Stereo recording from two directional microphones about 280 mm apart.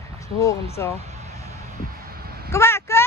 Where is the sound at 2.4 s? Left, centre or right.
Centre.